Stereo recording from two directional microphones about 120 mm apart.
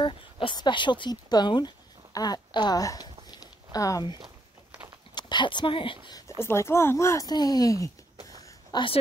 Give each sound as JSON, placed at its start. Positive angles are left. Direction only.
{"t": 0.0, "sound": "speech", "side_deg": 45}
{"t": 2.1, "sound": "a sound", "side_deg": 35}
{"t": 5.1, "sound": "speech", "side_deg": 40}
{"t": 6.4, "sound": "speech", "side_deg": 20}